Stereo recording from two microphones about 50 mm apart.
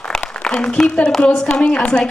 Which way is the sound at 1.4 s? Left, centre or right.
Centre.